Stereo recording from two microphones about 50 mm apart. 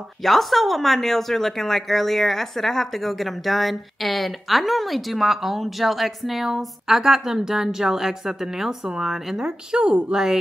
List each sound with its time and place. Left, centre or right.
0.2 s speech: centre
9.8 s speech: right